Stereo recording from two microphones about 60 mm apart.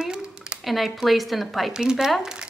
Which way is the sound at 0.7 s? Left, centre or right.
Centre.